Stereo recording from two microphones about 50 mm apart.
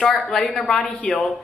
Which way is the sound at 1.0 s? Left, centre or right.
Left.